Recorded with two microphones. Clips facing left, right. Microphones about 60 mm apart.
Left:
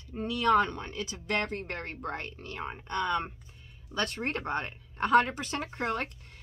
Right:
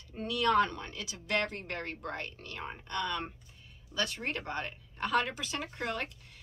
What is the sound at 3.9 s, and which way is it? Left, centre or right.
Speech, left.